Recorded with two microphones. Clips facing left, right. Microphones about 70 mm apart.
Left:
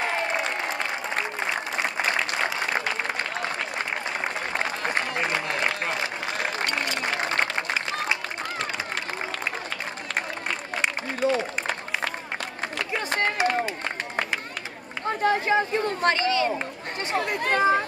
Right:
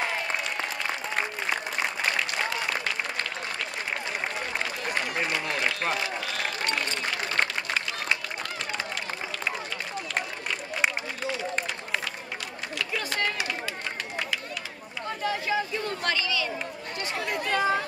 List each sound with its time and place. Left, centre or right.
4.6 s applause: left
11.2 s a sound: left
12.7 s run: left
15.0 s run: left
17.1 s speech: left